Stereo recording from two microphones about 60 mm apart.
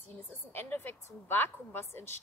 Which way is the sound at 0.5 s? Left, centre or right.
Left.